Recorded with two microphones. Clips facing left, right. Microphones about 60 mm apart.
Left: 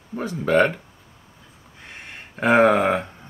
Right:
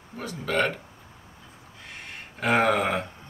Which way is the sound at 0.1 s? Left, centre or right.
Left.